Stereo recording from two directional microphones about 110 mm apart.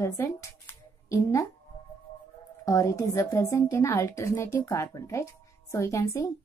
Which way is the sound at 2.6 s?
30° left (ahead or behind).